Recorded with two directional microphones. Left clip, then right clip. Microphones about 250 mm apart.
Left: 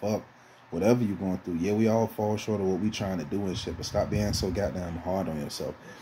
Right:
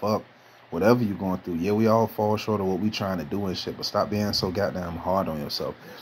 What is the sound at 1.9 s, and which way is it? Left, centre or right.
Speech, centre.